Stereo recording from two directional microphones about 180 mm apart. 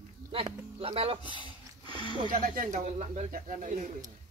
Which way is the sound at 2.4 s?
50° right (ahead or behind).